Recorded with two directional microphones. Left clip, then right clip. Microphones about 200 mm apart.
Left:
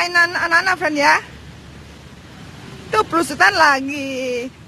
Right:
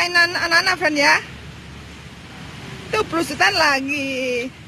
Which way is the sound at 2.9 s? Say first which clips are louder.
Left 4 dB; 15° left (ahead or behind).